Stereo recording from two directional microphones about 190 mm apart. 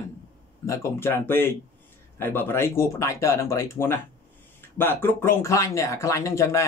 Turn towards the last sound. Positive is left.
turn(degrees=15)  # may be behind; listen again after turning